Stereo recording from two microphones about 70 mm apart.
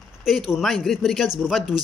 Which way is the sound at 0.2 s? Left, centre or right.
Centre.